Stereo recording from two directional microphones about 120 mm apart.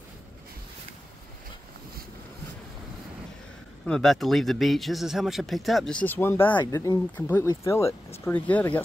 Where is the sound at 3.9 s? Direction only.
5° left (ahead or behind).